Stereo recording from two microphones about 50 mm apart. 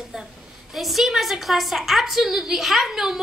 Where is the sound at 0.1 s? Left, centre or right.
Centre.